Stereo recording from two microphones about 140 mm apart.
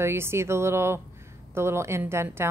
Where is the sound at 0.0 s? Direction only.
15° right (ahead or behind).